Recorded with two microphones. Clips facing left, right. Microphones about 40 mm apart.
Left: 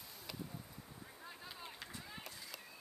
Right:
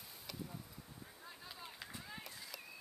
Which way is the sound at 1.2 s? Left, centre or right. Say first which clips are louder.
Left 2 dB; centre.